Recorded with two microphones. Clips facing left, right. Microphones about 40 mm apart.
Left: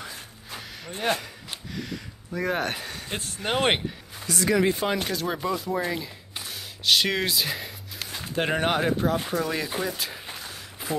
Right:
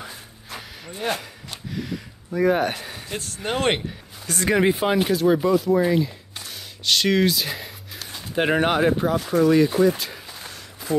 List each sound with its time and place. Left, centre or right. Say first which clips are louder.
1.0 s speech: even; centre
1.7 s a sound: right 5 dB; centre
3.4 s speech: right 1 dB; centre
4.5 s speech: right 3 dB; right
4.7 s speech: right 6 dB; centre